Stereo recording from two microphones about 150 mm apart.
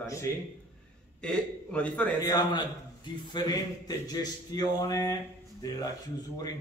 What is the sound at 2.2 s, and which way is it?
A man's voice, 25° left (ahead or behind).